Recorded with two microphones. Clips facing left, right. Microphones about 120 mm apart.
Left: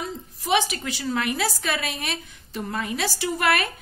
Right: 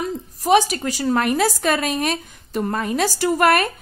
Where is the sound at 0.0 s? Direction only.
40° right (ahead or behind).